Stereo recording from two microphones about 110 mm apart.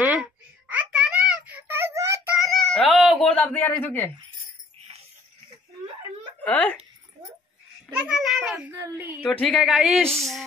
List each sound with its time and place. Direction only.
0.0 s a sound: 15° right (ahead or behind)
1.7 s a sound: 20° right (ahead or behind)
2.3 s a sound: centre (ahead or behind)
3.3 s a man's voice: 10° left (ahead or behind)
6.4 s a man's voice: 15° left (ahead or behind)
7.9 s a child's voice: 5° right (ahead or behind)
8.6 s speech: 20° right (ahead or behind)
9.2 s a man's voice: 10° left (ahead or behind)
9.6 s speech: centre (ahead or behind)